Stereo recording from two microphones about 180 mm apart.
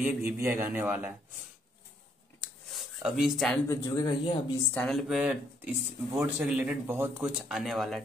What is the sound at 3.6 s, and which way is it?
Speech, 20° left (ahead or behind).